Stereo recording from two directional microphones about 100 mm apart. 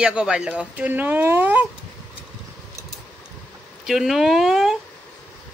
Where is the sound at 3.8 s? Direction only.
5° right (ahead or behind).